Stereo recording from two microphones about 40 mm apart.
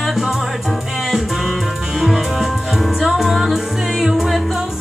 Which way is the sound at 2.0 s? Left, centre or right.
Centre.